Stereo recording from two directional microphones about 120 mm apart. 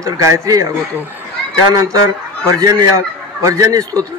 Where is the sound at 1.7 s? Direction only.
25° right (ahead or behind).